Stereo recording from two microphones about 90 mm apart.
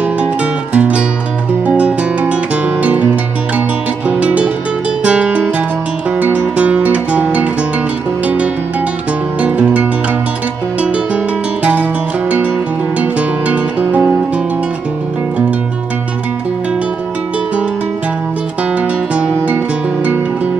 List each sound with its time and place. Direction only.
0.7 s music: 15° right (ahead or behind)
4.1 s music: 15° right (ahead or behind)
9.4 s music: 15° right (ahead or behind)
11.6 s music: 15° right (ahead or behind)
18.8 s music: 15° right (ahead or behind)